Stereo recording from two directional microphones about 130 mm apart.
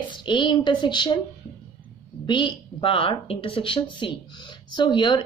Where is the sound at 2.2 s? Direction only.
35° left (ahead or behind).